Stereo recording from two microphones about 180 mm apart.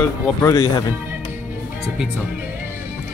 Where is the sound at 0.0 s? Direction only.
15° left (ahead or behind).